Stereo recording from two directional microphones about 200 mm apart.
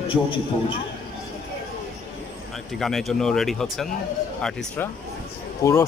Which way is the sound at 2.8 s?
Centre (ahead or behind).